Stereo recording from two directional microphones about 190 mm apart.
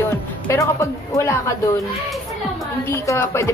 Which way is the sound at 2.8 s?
15° left (ahead or behind).